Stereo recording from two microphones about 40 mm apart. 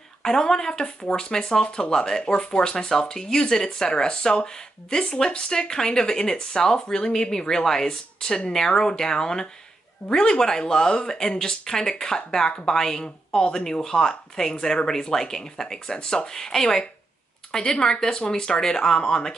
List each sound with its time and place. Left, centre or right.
0.2 s speech: centre